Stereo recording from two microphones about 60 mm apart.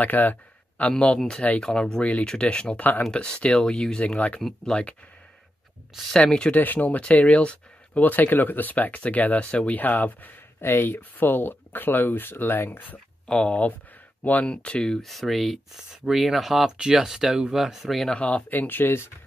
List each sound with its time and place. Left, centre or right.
0.0 s speech: left
0.8 s speech: centre
4.4 s speech: centre
6.1 s speech: centre
6.5 s speech: left
10.6 s speech: left
13.3 s speech: centre
15.0 s speech: centre
18.1 s speech: left